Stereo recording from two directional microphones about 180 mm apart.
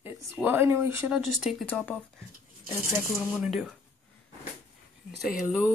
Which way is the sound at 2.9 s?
5° right (ahead or behind).